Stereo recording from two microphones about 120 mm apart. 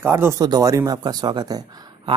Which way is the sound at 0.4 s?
30° right (ahead or behind).